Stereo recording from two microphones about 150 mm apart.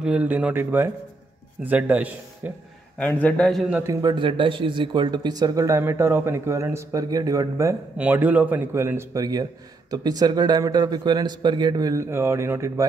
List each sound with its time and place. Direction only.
0.0 s speech: 10° right (ahead or behind)
3.0 s a man's voice: 10° left (ahead or behind)
3.7 s a man's voice: 20° right (ahead or behind)